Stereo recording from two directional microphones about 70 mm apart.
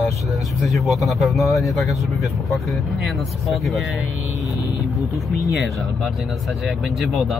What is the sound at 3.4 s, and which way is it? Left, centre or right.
Speech, centre.